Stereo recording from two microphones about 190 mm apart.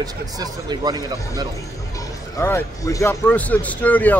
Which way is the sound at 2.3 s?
15° left (ahead or behind).